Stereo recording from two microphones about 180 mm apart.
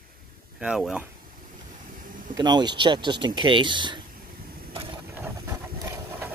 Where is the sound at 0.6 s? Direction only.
5° right (ahead or behind).